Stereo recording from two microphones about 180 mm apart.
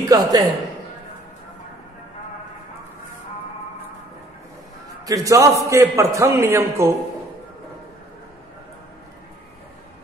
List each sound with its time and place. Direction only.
0.0 s a man's voice: 20° right (ahead or behind)
5.0 s a man's voice: 20° right (ahead or behind)